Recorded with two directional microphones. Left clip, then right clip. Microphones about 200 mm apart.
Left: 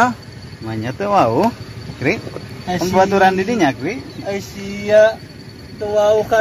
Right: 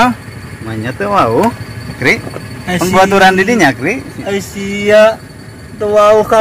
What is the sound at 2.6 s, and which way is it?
Speech, 10° left (ahead or behind).